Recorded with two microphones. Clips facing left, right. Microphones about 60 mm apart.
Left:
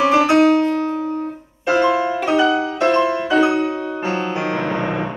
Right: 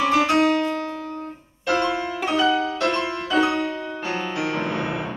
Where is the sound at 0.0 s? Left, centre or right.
Left.